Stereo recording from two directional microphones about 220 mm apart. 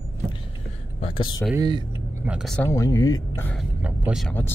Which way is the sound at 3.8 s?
5° right (ahead or behind).